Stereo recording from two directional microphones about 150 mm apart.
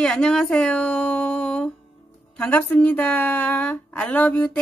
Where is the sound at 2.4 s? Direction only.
10° left (ahead or behind).